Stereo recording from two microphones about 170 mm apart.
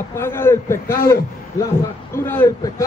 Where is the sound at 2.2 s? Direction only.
15° left (ahead or behind).